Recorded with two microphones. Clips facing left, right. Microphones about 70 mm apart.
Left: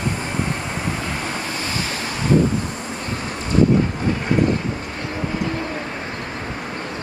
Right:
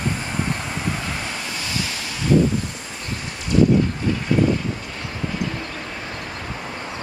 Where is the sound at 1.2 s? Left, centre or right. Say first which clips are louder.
Left 3 dB; left.